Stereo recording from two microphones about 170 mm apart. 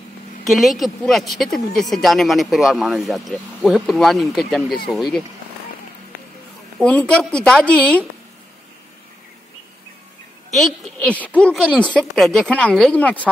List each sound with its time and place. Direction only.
0.5 s a woman's voice: centre (ahead or behind)
6.8 s a woman's voice: 5° left (ahead or behind)
10.5 s a woman's voice: 5° left (ahead or behind)